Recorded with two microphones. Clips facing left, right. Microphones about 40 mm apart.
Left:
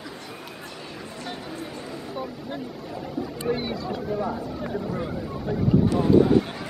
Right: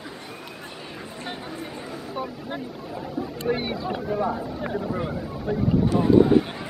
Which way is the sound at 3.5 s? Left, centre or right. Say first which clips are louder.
Right 2 dB; right.